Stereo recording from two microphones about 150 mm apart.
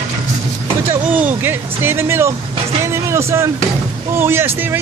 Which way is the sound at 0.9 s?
10° right (ahead or behind).